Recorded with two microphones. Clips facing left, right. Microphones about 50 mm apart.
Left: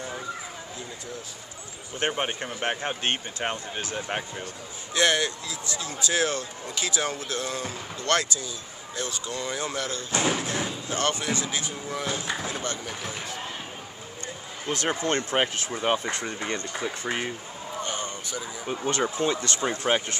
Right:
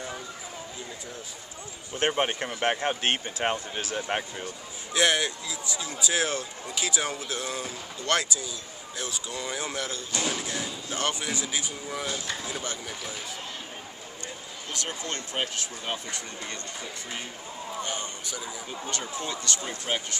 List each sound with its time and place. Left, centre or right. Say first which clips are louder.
2.0 s speech: right 2 dB; centre
3.0 s speech: right 1 dB; centre
4.1 s speech: right 1 dB; centre
10.1 s speech: left 5 dB; left
10.9 s speech: left 3 dB; centre
14.7 s speech: left 8 dB; left
17.7 s a sound: left 3 dB; centre
18.9 s speech: left 9 dB; left